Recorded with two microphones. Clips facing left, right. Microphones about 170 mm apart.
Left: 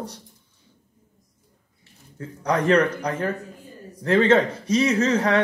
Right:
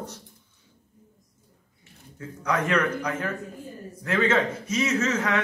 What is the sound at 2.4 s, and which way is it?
Speech, 35° left (ahead or behind).